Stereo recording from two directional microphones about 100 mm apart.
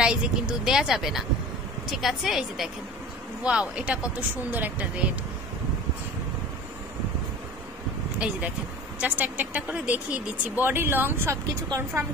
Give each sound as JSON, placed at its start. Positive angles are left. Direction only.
{"t": 0.0, "sound": "speech", "side_deg": -10}
{"t": 9.0, "sound": "speech", "side_deg": -15}